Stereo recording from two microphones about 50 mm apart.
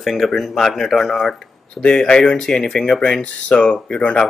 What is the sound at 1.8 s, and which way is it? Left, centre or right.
Speech, centre.